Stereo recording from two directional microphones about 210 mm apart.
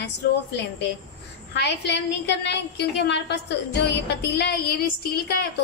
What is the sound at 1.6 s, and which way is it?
A woman's voice, 55° left (ahead or behind).